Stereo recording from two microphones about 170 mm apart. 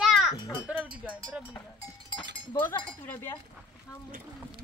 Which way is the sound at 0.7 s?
10° right (ahead or behind).